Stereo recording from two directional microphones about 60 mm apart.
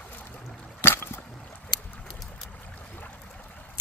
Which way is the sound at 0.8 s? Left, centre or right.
Left.